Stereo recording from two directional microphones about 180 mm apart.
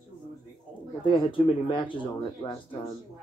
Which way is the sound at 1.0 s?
30° left (ahead or behind).